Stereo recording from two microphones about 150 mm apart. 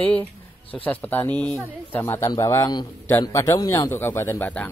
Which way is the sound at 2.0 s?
20° left (ahead or behind).